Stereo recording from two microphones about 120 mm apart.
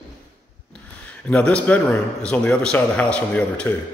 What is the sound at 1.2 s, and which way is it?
A man's voice, 10° left (ahead or behind).